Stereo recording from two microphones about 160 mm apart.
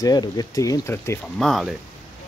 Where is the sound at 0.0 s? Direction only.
25° left (ahead or behind).